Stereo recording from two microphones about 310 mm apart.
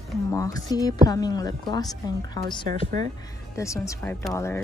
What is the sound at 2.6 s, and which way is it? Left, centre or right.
Speech, right.